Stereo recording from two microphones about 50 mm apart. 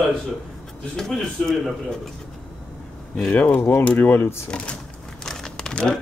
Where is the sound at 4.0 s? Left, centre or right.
Left.